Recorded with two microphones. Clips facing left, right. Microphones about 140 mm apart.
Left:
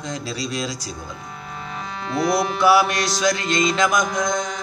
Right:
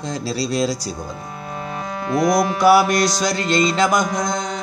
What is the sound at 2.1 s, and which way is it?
Music, 40° right (ahead or behind).